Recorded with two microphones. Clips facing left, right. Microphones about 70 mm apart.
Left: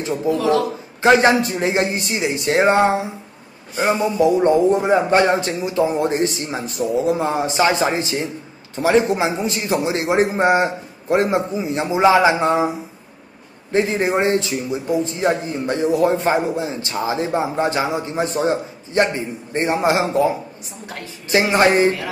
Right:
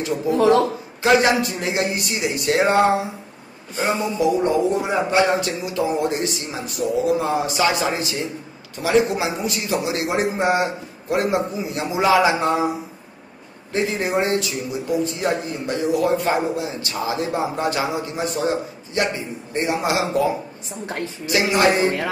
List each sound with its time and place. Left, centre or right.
0.3 s speech: right
1.0 s a man's voice: left
4.2 s a man's voice: left
21.3 s speech: left